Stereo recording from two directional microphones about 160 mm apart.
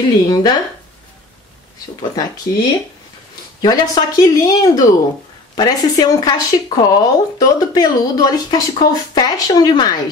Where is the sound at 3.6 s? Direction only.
25° left (ahead or behind).